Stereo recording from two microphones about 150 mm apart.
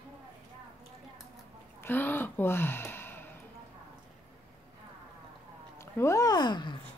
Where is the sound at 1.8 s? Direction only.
15° left (ahead or behind).